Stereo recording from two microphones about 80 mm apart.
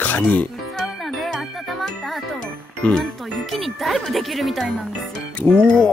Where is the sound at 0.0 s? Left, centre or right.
Centre.